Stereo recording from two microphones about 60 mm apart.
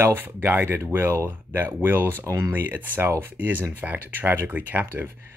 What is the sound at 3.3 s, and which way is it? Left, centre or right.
Speech, right.